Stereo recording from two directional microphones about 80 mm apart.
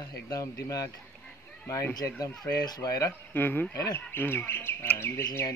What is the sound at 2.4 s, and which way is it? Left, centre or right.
Speech, left.